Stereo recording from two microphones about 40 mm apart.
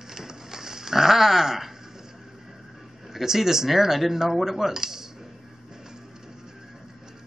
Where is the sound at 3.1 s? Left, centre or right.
Centre.